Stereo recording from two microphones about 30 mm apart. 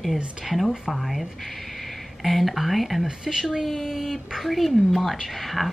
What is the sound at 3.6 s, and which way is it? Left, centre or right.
Speech, centre.